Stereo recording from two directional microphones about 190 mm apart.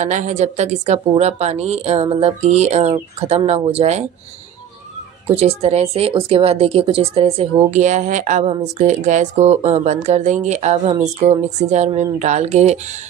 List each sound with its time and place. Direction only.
0.0 s speech: 40° right (ahead or behind)
5.3 s speech: 35° right (ahead or behind)